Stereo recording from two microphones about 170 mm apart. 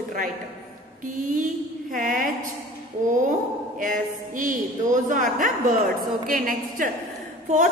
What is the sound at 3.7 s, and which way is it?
A man's voice, 50° right (ahead or behind).